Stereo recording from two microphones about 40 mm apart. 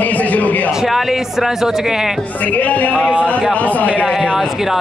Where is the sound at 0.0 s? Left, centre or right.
Left.